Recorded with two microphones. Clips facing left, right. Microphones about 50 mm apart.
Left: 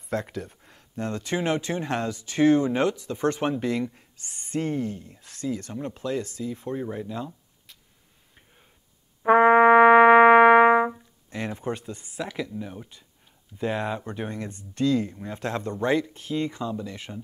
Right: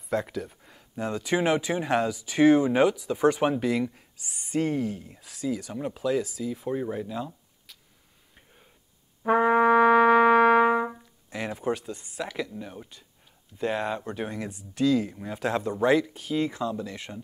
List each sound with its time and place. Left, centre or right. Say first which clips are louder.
0.1 s speech: right 1 dB; centre
9.2 s brass instrument: left 5 dB; left
10.9 s speech: left 2 dB; centre